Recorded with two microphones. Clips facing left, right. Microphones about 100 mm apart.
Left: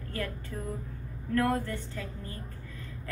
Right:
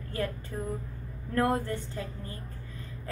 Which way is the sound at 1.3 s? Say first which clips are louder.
Right 1 dB; 25° right (ahead or behind).